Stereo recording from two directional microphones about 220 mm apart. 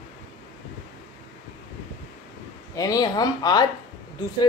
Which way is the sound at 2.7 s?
15° left (ahead or behind).